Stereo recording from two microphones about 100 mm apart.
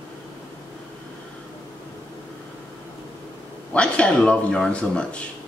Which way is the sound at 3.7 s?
10° left (ahead or behind).